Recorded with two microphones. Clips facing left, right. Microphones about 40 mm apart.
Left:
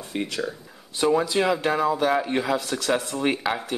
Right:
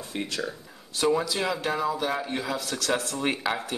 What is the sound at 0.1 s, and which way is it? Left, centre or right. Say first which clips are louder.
Speech: left 4 dB; centre.